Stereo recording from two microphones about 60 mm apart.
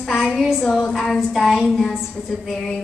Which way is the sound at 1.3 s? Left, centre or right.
Centre.